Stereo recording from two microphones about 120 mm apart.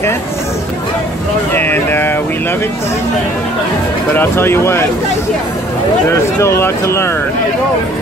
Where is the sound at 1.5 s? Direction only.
15° left (ahead or behind).